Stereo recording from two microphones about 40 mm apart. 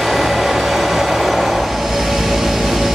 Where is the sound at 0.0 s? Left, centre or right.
Centre.